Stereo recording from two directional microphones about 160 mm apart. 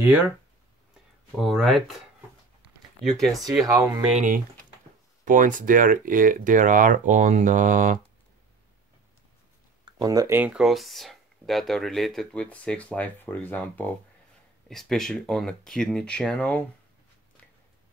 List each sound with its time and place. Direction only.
0.0 s speech: 10° right (ahead or behind)
1.3 s speech: centre (ahead or behind)
3.6 s speech: 20° right (ahead or behind)
4.1 s speech: 55° right (ahead or behind)
9.8 s speech: 25° right (ahead or behind)
10.4 s speech: 5° right (ahead or behind)